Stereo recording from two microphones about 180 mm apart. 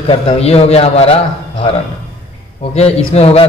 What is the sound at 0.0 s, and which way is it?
A man's voice, 30° left (ahead or behind).